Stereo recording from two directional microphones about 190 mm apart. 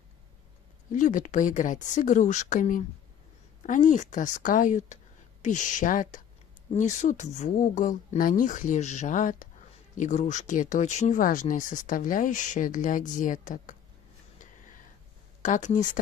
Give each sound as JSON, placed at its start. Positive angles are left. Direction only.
{"t": 0.9, "sound": "speech", "side_deg": 40}
{"t": 15.4, "sound": "speech", "side_deg": 40}